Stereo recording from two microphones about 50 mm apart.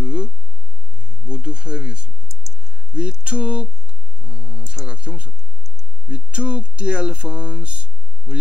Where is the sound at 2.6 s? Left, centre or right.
Right.